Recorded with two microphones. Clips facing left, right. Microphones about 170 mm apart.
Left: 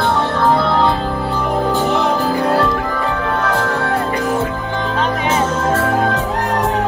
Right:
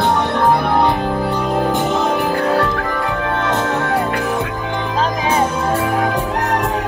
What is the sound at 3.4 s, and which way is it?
Music, 20° right (ahead or behind).